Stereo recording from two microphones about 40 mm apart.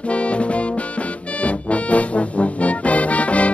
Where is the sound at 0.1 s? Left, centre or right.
Left.